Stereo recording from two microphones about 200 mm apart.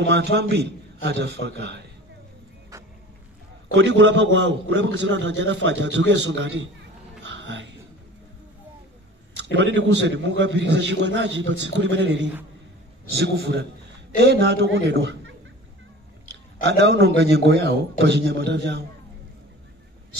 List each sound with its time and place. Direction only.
0.0 s a man's voice: 60° right (ahead or behind)
3.7 s a man's voice: 60° right (ahead or behind)
7.2 s a sound: 60° right (ahead or behind)
9.4 s a man's voice: 60° right (ahead or behind)
16.6 s a man's voice: 55° right (ahead or behind)